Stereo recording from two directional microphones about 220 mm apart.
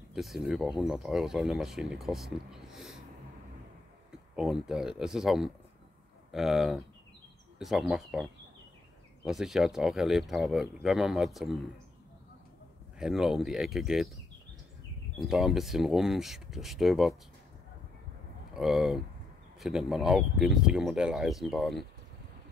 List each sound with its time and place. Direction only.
0.1 s speech: centre (ahead or behind)
4.4 s speech: centre (ahead or behind)
13.0 s speech: centre (ahead or behind)
15.1 s speech: centre (ahead or behind)
18.5 s speech: centre (ahead or behind)